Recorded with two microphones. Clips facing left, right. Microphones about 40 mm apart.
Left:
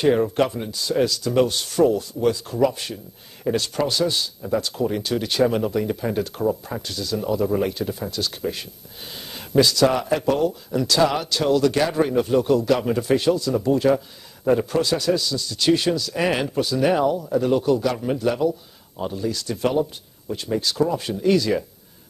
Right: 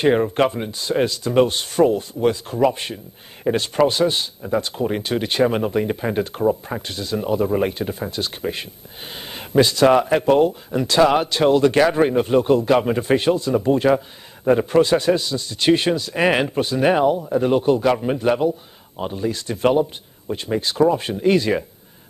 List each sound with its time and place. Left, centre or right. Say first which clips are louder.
0.0 s a man's voice: right 2 dB; right